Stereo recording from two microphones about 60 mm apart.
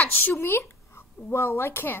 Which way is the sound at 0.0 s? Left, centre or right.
Left.